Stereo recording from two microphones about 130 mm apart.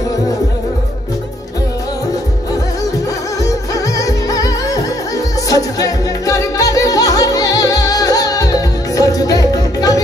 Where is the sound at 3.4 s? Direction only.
25° left (ahead or behind).